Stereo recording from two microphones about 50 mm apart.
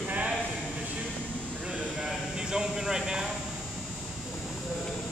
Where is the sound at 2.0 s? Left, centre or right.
Centre.